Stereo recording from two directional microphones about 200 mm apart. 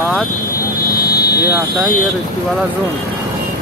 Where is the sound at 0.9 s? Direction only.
50° left (ahead or behind).